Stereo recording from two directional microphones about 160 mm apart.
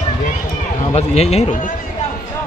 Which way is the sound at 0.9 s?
40° left (ahead or behind).